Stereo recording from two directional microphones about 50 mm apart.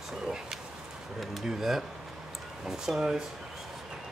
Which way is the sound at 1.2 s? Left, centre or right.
Centre.